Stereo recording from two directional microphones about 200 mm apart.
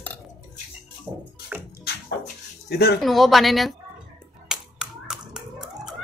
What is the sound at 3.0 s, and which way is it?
Speech, centre (ahead or behind).